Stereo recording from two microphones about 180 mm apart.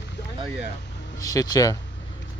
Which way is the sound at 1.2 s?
20° left (ahead or behind).